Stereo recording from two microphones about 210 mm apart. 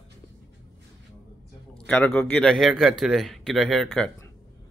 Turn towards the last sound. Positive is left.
turn(degrees=0)  # may be behind; listen again after turning